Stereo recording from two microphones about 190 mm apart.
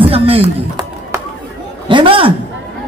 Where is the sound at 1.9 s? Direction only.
25° right (ahead or behind).